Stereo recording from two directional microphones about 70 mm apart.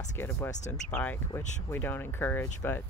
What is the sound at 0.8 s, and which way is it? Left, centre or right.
Speech, left.